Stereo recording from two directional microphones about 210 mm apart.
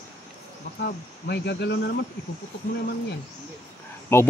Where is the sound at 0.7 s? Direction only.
50° left (ahead or behind).